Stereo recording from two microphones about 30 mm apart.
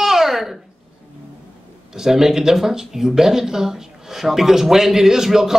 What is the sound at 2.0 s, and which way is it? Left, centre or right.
Speech, centre.